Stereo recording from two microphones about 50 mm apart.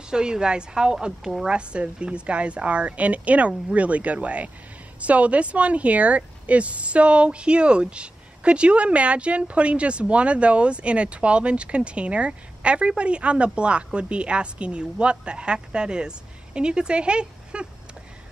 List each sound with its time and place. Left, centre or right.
0.1 s a woman's voice: centre